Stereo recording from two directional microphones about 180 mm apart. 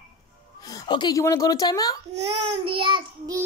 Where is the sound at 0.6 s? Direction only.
20° left (ahead or behind).